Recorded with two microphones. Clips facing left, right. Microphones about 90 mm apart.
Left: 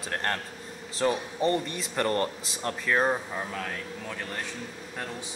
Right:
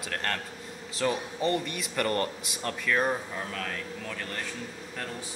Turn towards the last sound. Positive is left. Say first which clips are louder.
# left 1 dB
turn(degrees=10)  # may be behind; listen again after turning